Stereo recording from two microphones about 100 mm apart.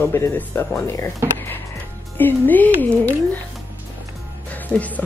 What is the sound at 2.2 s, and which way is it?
Speech, 20° left (ahead or behind).